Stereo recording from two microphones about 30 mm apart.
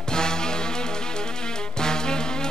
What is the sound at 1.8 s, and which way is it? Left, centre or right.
Music, left.